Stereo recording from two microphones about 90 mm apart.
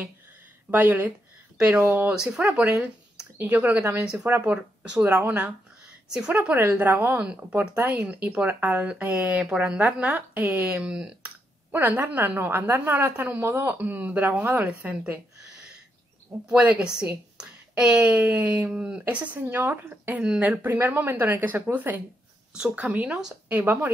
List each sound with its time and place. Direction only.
0.7 s a woman's voice: 20° right (ahead or behind)
11.7 s a woman's voice: 20° right (ahead or behind)
16.4 s a woman's voice: 15° right (ahead or behind)